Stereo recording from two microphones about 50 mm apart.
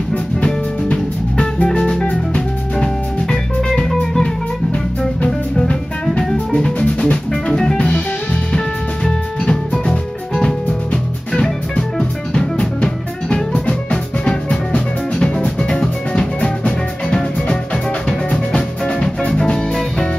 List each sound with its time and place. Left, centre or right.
0.4 s music: left
6.0 s music: centre
7.8 s music: left
8.5 s music: centre